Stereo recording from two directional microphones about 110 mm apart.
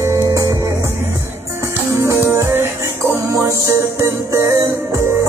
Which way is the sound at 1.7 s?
25° right (ahead or behind).